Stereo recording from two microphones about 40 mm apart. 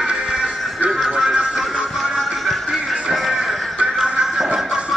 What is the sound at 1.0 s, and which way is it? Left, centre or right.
Music, centre.